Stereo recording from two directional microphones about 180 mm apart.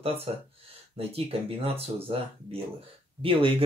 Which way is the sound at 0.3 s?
30° right (ahead or behind).